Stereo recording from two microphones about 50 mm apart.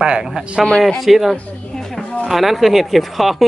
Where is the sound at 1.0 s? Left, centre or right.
Centre.